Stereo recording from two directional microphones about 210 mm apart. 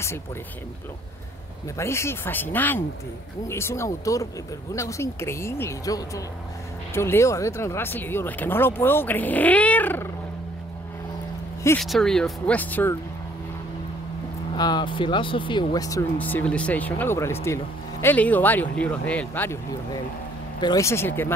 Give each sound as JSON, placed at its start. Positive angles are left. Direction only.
{"t": 1.8, "sound": "speech", "side_deg": 15}
{"t": 11.8, "sound": "speech", "side_deg": 0}
{"t": 14.5, "sound": "speech", "side_deg": 20}
{"t": 20.6, "sound": "speech", "side_deg": 15}